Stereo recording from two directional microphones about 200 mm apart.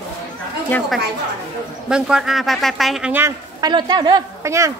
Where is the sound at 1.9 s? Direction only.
5° right (ahead or behind).